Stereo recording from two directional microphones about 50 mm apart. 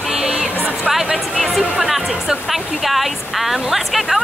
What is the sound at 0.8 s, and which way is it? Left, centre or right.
Music, centre.